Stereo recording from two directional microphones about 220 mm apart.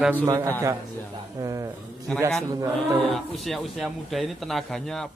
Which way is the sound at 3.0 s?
Centre (ahead or behind).